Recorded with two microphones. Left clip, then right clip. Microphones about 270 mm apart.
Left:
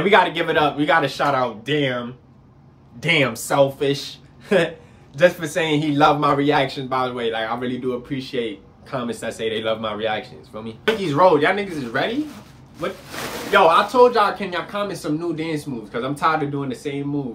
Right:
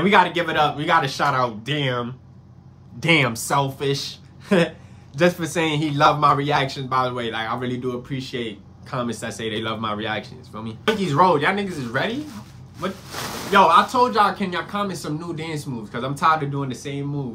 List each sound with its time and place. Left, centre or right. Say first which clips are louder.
0.0 s speech: left 1 dB; centre
3.0 s speech: even; centre
13.5 s speech: even; centre